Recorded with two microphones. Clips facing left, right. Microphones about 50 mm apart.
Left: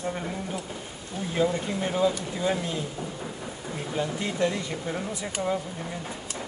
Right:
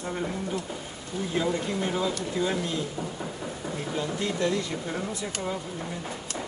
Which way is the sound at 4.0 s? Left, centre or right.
Left.